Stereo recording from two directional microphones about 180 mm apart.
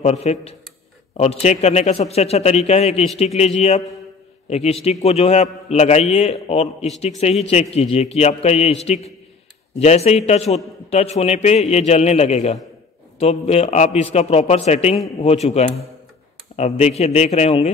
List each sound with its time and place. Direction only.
0.0 s a man's voice: 35° left (ahead or behind)